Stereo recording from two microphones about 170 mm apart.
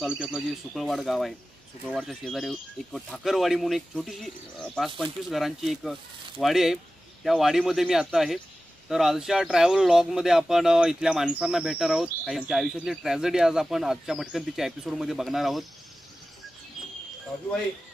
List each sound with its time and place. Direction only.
0.2 s speech: 5° right (ahead or behind)